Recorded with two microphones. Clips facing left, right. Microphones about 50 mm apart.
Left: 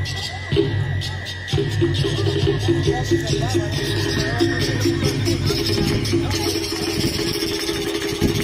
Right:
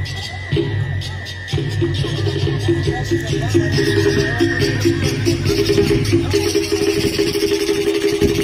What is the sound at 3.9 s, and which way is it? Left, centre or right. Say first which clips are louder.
Music: right 3 dB; right.